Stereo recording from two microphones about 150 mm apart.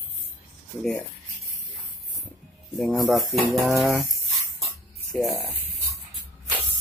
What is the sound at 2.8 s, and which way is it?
Speech, centre (ahead or behind).